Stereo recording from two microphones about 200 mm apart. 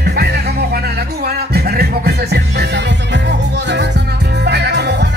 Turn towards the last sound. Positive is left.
turn(degrees=-60)  # may be behind; listen again after turning